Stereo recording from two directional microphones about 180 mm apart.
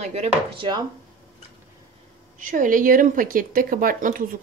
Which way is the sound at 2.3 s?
45° right (ahead or behind).